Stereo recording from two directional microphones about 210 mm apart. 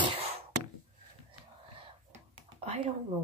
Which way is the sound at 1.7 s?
25° right (ahead or behind).